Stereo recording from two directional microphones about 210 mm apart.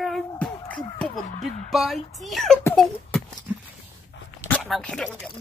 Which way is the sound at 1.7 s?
Centre (ahead or behind).